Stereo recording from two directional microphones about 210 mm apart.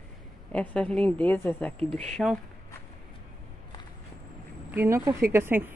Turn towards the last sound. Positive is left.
turn(degrees=-10)  # may be behind; listen again after turning